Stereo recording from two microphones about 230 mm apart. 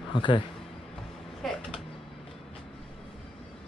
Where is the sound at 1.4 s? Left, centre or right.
Centre.